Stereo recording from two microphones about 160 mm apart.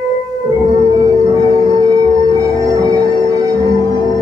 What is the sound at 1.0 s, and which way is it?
Singing bowl, 20° right (ahead or behind).